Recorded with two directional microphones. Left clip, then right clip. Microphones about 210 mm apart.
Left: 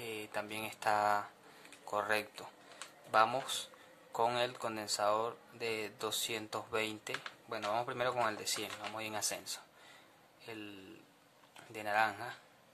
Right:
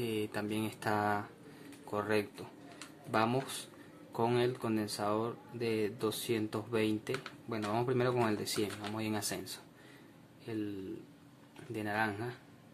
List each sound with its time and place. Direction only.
0.0 s a man's voice: 10° left (ahead or behind)
11.7 s speech: 15° left (ahead or behind)